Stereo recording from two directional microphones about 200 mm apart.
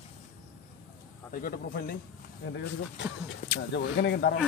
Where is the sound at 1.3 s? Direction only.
45° left (ahead or behind).